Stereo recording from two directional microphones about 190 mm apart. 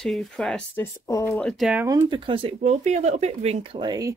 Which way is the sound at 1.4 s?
Centre (ahead or behind).